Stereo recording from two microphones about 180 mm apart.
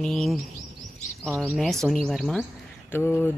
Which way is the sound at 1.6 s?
Centre (ahead or behind).